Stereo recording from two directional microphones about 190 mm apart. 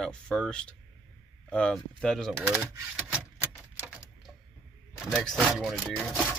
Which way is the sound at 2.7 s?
10° right (ahead or behind).